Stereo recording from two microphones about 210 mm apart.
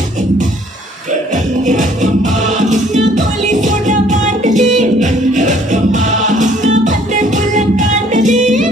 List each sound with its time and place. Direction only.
1.3 s music: 35° right (ahead or behind)